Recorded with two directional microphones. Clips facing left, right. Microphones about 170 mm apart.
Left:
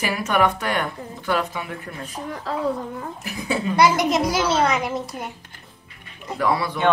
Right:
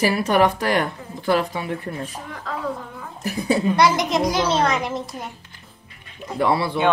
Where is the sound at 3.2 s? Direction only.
35° right (ahead or behind).